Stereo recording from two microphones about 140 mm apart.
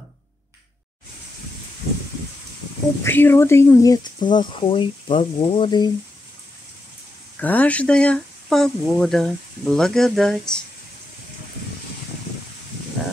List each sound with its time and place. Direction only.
3.0 s speech: 15° left (ahead or behind); by 5.9 s 35° left (ahead or behind)
7.3 s speech: 10° left (ahead or behind)